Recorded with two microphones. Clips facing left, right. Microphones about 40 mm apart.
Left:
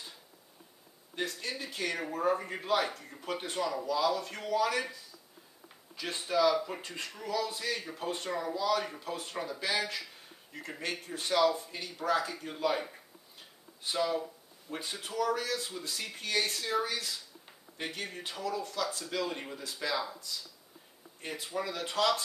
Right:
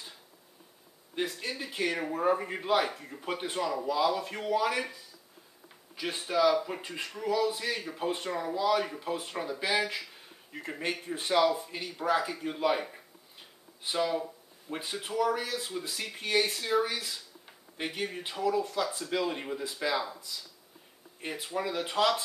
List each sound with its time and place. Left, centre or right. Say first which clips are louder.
1.1 s speech: right 2 dB; centre
13.8 s speech: right 2 dB; centre